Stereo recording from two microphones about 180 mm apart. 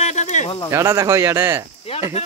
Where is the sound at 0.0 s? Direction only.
40° left (ahead or behind).